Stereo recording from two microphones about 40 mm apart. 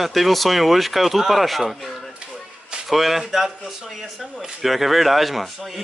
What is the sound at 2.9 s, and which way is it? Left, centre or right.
A man's voice, centre.